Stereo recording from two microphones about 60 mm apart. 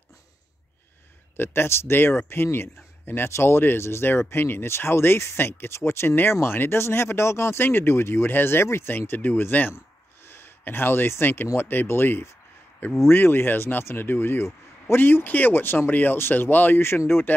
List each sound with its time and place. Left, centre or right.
1.3 s speech: left
7.6 s speech: left